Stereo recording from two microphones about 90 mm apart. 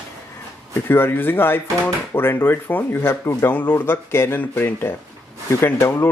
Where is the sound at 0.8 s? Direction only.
25° left (ahead or behind).